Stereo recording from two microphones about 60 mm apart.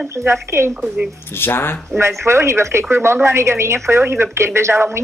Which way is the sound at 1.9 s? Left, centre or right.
Right.